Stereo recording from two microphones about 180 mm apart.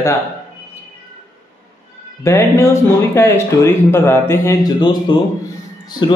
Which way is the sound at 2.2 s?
15° left (ahead or behind).